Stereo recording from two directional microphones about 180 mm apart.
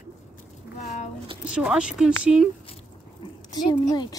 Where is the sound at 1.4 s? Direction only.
5° right (ahead or behind).